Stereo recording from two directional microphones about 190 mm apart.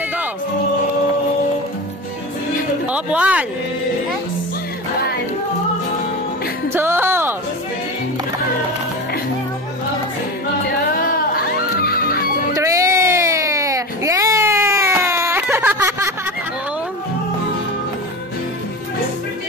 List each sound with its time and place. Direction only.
2.9 s speech: 5° right (ahead or behind)
6.7 s music: 10° right (ahead or behind)
11.1 s music: 50° left (ahead or behind)
12.5 s baby cry: 15° right (ahead or behind)